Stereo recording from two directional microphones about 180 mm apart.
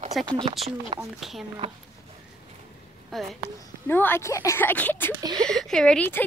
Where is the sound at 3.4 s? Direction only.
10° left (ahead or behind).